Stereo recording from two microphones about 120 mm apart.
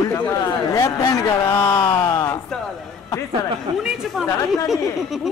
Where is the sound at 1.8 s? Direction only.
35° left (ahead or behind).